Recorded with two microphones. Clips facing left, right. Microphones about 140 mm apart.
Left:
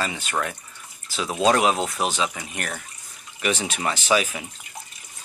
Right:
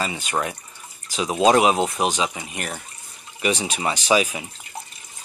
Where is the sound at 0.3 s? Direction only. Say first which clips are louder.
Right 2 dB; 15° right (ahead or behind).